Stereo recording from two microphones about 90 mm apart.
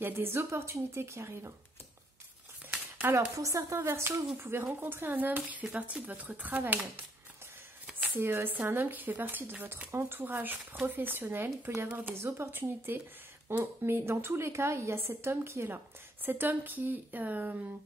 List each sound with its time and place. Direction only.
0.0 s speech: 25° right (ahead or behind)
3.3 s speech: 35° right (ahead or behind); by 6.9 s 20° right (ahead or behind)
8.2 s speech: 25° right (ahead or behind)